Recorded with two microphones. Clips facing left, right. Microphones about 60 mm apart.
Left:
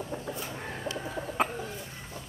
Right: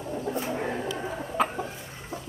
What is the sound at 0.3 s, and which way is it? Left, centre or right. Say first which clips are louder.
Chicken: right 8 dB; right.